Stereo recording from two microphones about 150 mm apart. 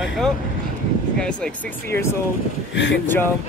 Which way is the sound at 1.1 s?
5° left (ahead or behind).